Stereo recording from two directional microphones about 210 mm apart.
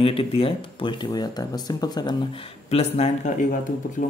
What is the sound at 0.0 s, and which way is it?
Speech, 25° left (ahead or behind).